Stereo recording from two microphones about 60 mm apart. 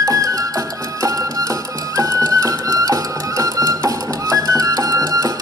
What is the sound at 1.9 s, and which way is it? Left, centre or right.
Music, right.